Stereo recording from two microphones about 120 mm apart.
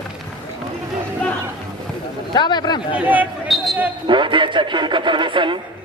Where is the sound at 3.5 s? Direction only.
Centre (ahead or behind).